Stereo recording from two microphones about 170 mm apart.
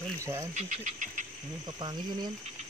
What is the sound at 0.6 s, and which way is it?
Speech, 45° right (ahead or behind).